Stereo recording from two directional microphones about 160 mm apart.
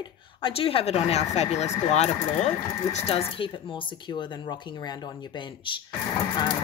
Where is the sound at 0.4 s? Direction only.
35° left (ahead or behind).